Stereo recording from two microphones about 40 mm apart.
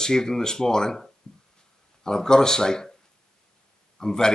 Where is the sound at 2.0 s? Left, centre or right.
Centre.